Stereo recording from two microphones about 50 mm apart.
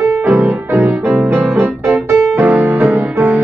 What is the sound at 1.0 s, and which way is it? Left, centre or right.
Music, right.